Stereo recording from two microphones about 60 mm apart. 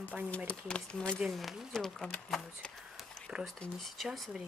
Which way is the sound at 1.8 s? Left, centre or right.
Centre.